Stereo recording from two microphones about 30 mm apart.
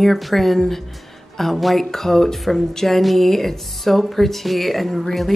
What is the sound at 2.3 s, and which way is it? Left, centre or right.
Speech, centre.